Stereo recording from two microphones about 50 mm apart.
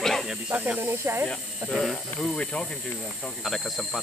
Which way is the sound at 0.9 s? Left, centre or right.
Right.